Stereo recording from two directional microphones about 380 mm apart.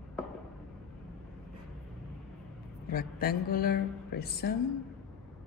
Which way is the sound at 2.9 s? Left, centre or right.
Left.